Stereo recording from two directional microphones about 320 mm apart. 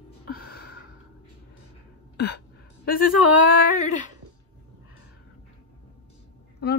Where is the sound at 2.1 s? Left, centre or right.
Left.